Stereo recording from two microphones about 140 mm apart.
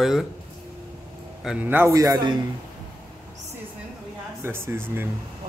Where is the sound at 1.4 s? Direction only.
10° right (ahead or behind); by 2.4 s 30° right (ahead or behind).